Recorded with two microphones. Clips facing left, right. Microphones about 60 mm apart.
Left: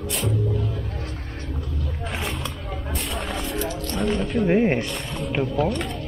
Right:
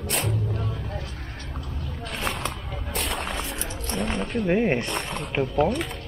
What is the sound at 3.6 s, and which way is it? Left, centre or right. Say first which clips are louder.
Wild animals: left 6 dB; right.